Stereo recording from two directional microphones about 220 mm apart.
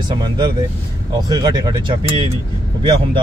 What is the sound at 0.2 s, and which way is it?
Speech, 20° right (ahead or behind).